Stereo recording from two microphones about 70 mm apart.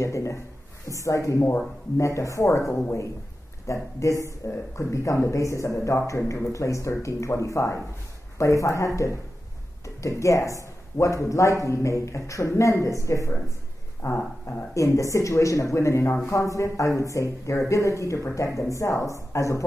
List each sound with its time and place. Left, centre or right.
0.0 s a man's voice: left
14.0 s a sound: left
14.7 s a man's voice: left